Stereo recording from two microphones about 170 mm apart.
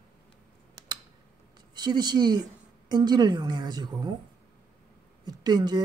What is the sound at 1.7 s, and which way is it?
A woman's voice, 25° right (ahead or behind).